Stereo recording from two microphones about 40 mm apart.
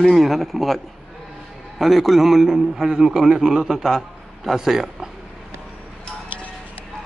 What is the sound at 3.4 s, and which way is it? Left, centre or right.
Speech, centre.